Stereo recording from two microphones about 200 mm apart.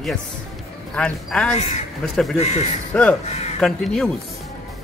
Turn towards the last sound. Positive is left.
turn(degrees=0)  # may be behind; listen again after turning